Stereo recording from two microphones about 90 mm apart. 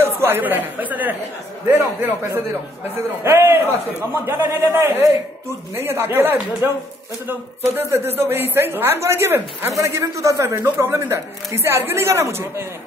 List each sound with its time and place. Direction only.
0.0 s speech: 25° right (ahead or behind)